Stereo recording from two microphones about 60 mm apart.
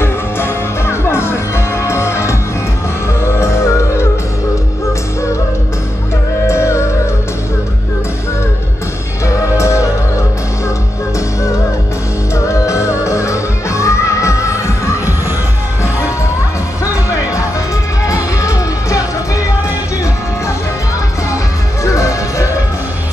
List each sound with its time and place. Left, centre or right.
0.0 s music: left
6.4 s music: left
9.3 s music: left
12.4 s music: left
18.0 s music: left
21.8 s music: left